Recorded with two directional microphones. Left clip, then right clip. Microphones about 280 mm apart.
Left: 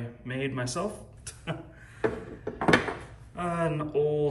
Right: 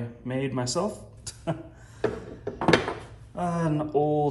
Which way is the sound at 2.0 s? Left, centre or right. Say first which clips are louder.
Right 1 dB; centre.